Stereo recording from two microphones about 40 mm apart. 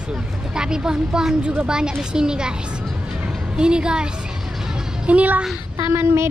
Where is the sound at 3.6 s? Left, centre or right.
Right.